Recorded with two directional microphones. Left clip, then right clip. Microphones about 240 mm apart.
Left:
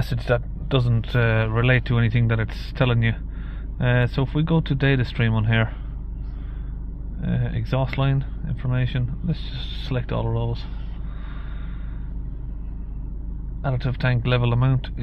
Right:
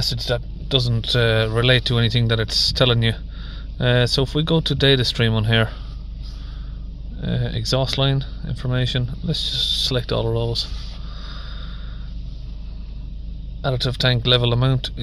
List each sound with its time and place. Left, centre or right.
0.0 s speech: centre; by 5.7 s right
7.2 s speech: right
13.6 s speech: right